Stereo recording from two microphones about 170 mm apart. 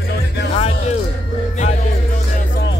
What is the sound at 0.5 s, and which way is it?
Music, 35° left (ahead or behind).